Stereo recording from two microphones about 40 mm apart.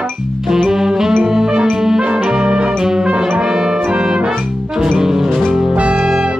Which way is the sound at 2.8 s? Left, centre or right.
Centre.